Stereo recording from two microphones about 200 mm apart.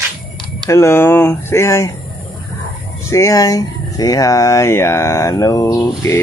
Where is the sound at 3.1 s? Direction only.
15° left (ahead or behind).